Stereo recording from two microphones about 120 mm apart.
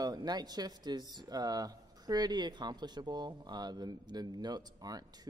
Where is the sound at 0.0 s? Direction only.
35° right (ahead or behind).